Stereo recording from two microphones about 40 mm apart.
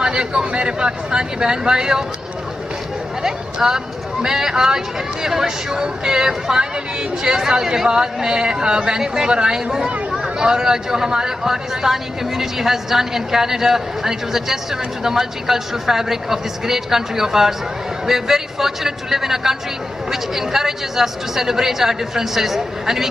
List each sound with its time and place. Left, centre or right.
0.0 s speech: right
3.2 s speech: centre